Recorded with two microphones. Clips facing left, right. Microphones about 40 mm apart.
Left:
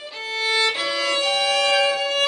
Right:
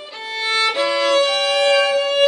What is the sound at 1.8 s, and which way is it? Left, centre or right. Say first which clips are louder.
Music: right 4 dB; centre.